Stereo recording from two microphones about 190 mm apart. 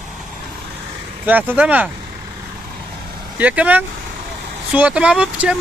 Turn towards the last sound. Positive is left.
turn(degrees=-5)  # may be behind; listen again after turning